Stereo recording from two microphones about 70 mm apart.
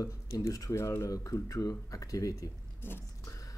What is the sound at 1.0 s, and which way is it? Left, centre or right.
Speech, left.